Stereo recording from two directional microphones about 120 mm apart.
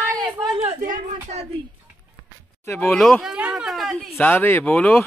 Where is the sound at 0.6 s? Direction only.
65° right (ahead or behind).